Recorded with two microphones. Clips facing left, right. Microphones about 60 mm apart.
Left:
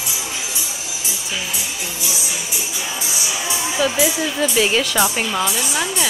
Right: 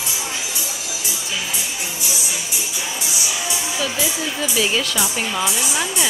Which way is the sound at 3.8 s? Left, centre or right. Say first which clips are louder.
Left 7 dB; centre.